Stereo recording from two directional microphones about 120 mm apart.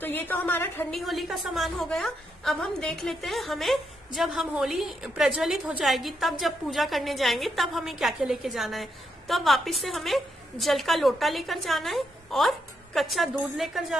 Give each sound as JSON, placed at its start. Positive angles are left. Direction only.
{"t": 0.0, "sound": "a woman's voice", "side_deg": 15}
{"t": 0.9, "sound": "a woman's voice", "side_deg": 0}